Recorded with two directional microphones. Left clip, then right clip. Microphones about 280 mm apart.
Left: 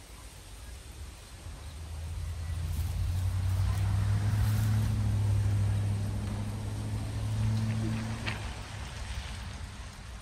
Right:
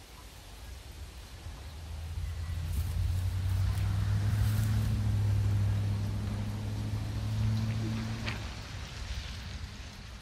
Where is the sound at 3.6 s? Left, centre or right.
Left.